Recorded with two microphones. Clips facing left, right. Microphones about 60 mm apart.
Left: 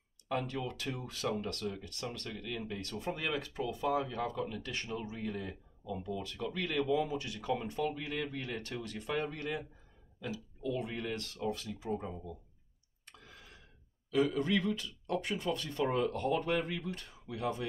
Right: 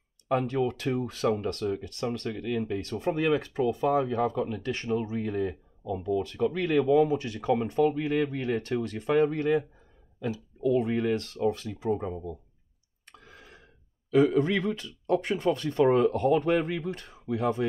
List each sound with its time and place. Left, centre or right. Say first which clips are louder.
0.3 s speech: right 10 dB; right
5.9 s speech: right 10 dB; right
13.0 s clicking: right 5 dB; right
14.1 s speech: right 8 dB; right